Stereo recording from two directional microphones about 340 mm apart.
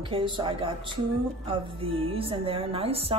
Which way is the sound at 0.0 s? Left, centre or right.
Centre.